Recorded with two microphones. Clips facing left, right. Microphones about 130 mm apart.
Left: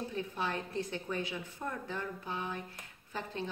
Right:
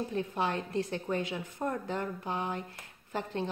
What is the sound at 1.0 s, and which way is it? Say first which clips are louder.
Speech: right 4 dB; 50° right (ahead or behind).